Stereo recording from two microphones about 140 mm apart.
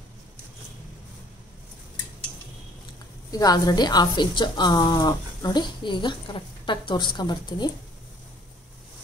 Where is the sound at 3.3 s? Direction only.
25° left (ahead or behind).